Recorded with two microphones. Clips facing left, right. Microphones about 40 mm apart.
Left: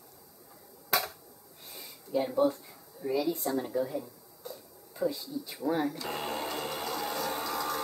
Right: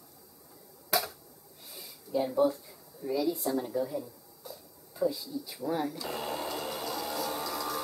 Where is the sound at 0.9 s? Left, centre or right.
Centre.